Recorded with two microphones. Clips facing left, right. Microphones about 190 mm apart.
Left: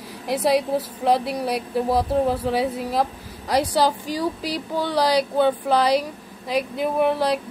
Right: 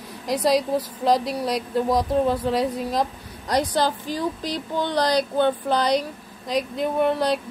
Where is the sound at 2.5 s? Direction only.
5° left (ahead or behind).